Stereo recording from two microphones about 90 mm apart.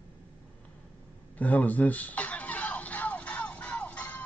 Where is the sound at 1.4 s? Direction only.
20° left (ahead or behind).